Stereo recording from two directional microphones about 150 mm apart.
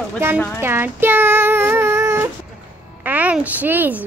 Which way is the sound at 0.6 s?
15° right (ahead or behind).